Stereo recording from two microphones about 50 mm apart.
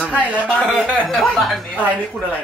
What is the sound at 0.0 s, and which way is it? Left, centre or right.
Speech, right.